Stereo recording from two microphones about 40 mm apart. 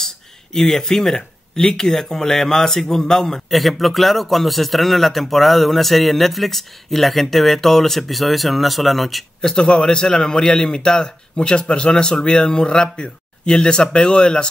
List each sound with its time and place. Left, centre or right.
0.0 s speech: centre
9.4 s a man's voice: centre